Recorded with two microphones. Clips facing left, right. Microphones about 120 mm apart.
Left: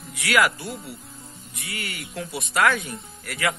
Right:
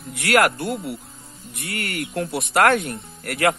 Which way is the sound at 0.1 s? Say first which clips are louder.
Right 3 dB; 55° right (ahead or behind).